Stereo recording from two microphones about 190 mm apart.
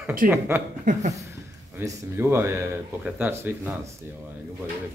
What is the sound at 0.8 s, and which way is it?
Speech, 40° right (ahead or behind).